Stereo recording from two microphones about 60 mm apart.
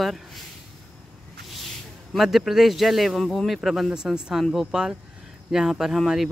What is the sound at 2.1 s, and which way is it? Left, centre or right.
Speech, centre.